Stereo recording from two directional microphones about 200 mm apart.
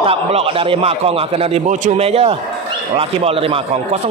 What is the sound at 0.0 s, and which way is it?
A man's voice, 30° right (ahead or behind).